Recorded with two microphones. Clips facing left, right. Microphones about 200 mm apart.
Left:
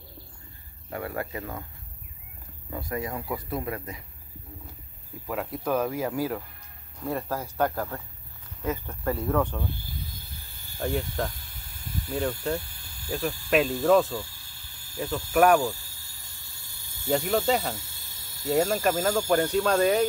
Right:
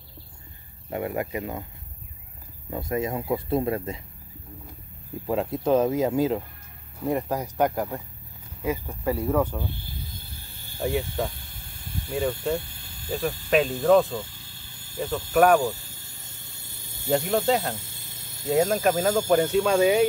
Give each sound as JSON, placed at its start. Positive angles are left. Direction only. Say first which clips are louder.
{"t": 0.8, "sound": "speech", "louder": "right 4 dB", "side_deg": -20}
{"t": 2.7, "sound": "speech", "louder": "right 5 dB", "side_deg": -20}
{"t": 5.2, "sound": "speech", "louder": "right 6 dB", "side_deg": -25}
{"t": 10.8, "sound": "speech", "louder": "right 2 dB", "side_deg": -5}
{"t": 13.5, "sound": "speech", "louder": "right 2 dB", "side_deg": 0}
{"t": 15.6, "sound": "snake", "louder": "right 2 dB", "side_deg": -20}
{"t": 17.0, "sound": "speech", "louder": "right 2 dB", "side_deg": 0}